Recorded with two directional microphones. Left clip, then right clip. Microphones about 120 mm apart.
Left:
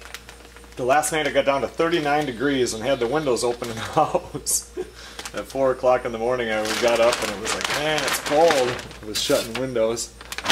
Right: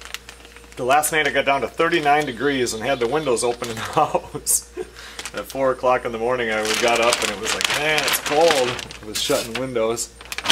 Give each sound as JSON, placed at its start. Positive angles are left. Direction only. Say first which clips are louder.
{"t": 0.7, "sound": "speech", "louder": "right 2 dB", "side_deg": -15}
{"t": 5.1, "sound": "a sound", "louder": "right 1 dB", "side_deg": -10}
{"t": 5.6, "sound": "speech", "louder": "even", "side_deg": -20}
{"t": 9.1, "sound": "speech", "louder": "even", "side_deg": -5}